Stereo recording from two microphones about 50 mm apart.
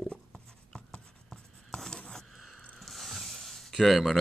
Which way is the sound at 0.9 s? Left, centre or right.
Centre.